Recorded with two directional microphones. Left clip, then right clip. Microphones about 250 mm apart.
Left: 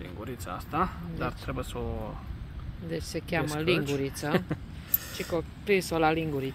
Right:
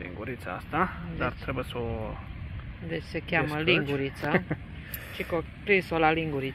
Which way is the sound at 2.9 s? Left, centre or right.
Centre.